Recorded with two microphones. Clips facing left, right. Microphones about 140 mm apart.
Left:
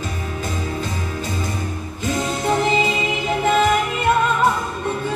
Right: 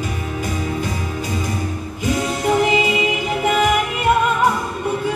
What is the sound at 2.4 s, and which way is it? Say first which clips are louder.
Music: right 2 dB; 10° right (ahead or behind).